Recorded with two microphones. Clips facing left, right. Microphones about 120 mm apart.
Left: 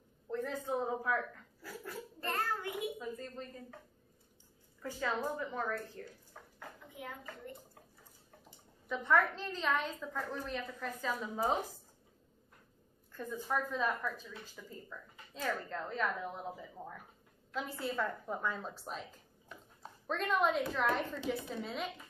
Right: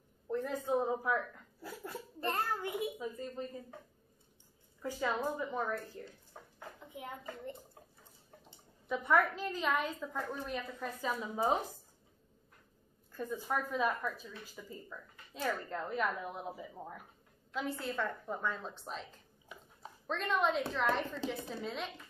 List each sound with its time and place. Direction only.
0.3 s speech: 10° right (ahead or behind)
3.0 s speech: 10° right (ahead or behind)
4.8 s a child's voice: 15° right (ahead or behind)
8.9 s speech: 10° right (ahead or behind)
13.1 s speech: 10° right (ahead or behind)
17.6 s a woman's voice: centre (ahead or behind)